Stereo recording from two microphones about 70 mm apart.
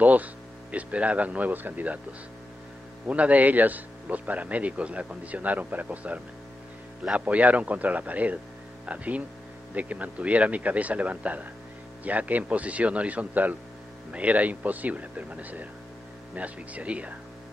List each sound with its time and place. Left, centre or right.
0.0 s a man's voice: right
3.1 s a man's voice: centre